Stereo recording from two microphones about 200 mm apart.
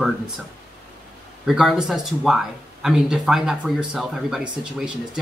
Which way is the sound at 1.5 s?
Centre (ahead or behind).